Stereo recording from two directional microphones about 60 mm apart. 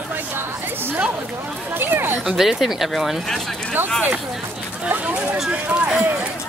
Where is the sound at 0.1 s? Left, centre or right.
Right.